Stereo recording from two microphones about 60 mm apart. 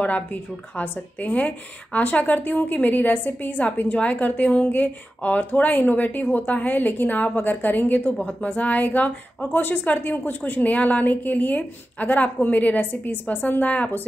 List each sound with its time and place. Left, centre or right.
0.0 s a woman's voice: left